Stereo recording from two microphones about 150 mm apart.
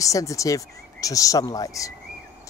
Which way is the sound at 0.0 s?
20° left (ahead or behind).